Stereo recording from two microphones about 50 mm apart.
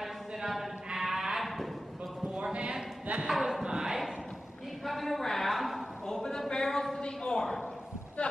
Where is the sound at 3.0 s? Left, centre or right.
Right.